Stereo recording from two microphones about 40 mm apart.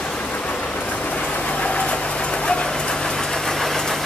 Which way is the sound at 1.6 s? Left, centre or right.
Left.